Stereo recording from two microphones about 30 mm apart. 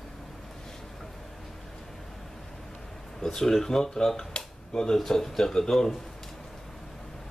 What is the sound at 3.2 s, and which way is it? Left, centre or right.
Speech, centre.